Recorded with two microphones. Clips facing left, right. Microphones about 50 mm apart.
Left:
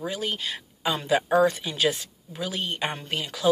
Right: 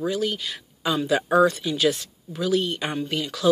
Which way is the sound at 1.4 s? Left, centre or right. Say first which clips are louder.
Right 2 dB; left.